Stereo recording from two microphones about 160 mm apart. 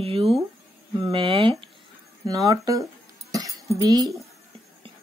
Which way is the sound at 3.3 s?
20° right (ahead or behind).